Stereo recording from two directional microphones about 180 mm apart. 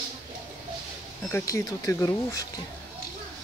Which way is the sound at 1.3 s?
15° left (ahead or behind).